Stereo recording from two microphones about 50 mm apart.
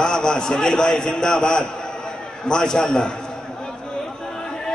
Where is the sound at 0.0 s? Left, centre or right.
Centre.